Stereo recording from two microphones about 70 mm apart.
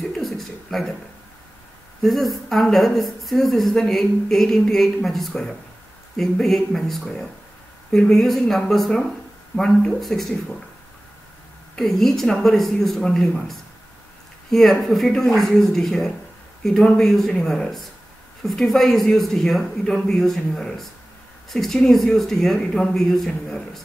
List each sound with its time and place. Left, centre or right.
0.1 s a sound: centre
2.0 s a woman's voice: centre
11.7 s a woman's voice: centre